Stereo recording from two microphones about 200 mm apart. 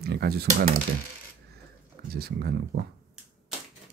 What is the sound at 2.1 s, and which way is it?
Speech, 50° right (ahead or behind).